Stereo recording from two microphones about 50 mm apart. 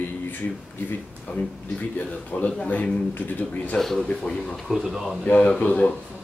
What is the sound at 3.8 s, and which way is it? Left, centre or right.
Speech, centre.